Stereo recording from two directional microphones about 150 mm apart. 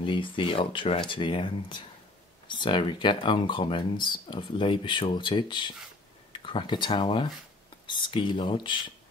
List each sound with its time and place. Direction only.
0.0 s speech: 35° left (ahead or behind)